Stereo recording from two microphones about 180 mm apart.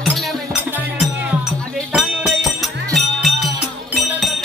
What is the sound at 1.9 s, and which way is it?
Music, centre (ahead or behind).